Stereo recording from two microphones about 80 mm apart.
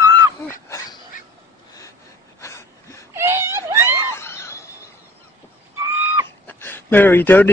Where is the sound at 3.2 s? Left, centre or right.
Right.